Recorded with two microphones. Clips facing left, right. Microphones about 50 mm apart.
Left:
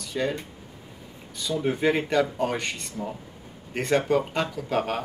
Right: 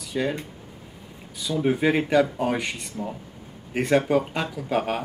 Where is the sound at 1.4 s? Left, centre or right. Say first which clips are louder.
Right 2 dB; centre.